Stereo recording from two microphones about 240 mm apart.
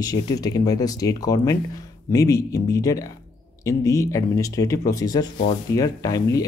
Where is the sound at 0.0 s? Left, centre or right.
Centre.